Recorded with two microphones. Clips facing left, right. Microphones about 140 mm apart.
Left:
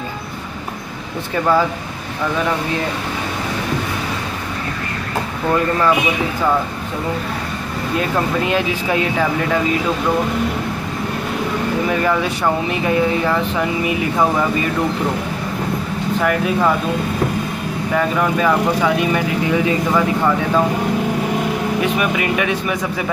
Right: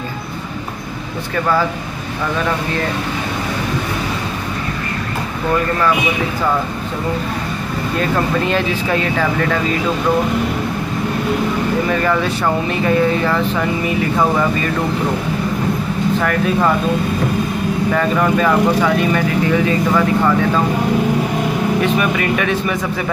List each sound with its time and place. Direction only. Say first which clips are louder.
8.0 s speech: right 2 dB; 10° left (ahead or behind)
11.9 s speech: right 1 dB; 10° left (ahead or behind)
16.2 s speech: left 1 dB; 10° left (ahead or behind)
17.9 s speech: even; 5° left (ahead or behind)
21.8 s speech: right 2 dB; 10° left (ahead or behind)